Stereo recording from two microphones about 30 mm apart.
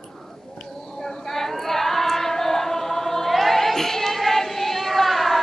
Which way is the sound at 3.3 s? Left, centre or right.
Centre.